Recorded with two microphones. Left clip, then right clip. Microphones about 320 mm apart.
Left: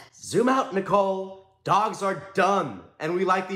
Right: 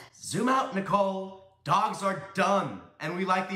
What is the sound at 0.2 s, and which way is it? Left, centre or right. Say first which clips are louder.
A man's voice: left 4 dB; centre.